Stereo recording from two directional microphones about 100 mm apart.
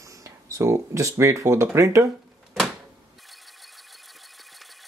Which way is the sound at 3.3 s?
Centre (ahead or behind).